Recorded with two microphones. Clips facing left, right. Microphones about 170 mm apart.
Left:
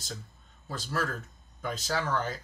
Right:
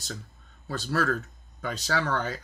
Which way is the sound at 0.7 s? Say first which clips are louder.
Right 6 dB; 70° right (ahead or behind).